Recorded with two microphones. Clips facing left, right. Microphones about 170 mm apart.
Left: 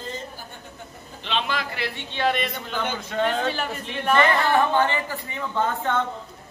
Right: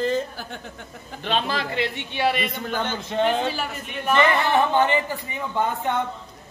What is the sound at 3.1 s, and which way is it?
A man's voice, 20° right (ahead or behind).